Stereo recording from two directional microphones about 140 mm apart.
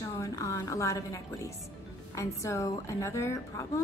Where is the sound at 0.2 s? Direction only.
20° left (ahead or behind).